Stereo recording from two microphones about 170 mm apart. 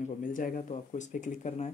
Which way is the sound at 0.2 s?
50° left (ahead or behind).